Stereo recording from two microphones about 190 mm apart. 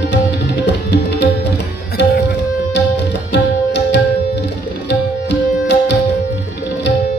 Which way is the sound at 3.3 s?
65° left (ahead or behind).